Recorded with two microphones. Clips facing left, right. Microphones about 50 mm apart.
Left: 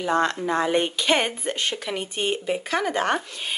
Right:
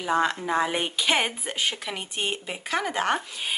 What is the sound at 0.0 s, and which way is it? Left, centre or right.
Speech, centre.